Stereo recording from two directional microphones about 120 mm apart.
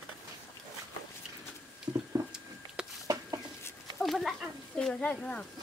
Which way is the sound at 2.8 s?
5° right (ahead or behind).